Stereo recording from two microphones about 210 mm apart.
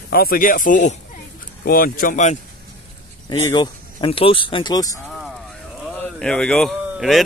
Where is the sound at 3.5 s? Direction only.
20° left (ahead or behind).